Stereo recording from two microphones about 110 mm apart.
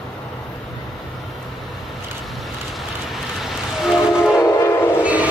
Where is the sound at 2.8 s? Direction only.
Centre (ahead or behind).